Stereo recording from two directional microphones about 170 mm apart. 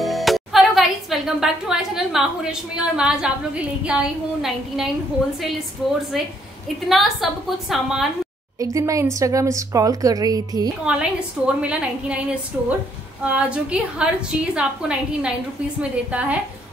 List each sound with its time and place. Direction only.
0.0 s music: centre (ahead or behind)
2.7 s a woman's voice: 5° right (ahead or behind)
8.5 s speech: 20° right (ahead or behind)
10.9 s a woman's voice: 5° right (ahead or behind)